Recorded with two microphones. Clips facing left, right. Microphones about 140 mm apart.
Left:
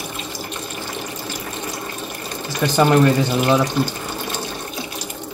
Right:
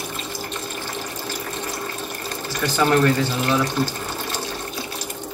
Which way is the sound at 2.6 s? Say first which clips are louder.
Left 3 dB; 15° left (ahead or behind).